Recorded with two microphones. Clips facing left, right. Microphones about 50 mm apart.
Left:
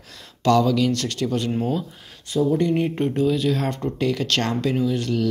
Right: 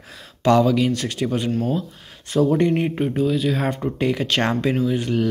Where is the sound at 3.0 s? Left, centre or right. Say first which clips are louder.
Even; centre.